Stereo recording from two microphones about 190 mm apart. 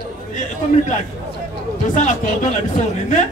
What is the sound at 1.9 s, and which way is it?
Speech, 40° left (ahead or behind).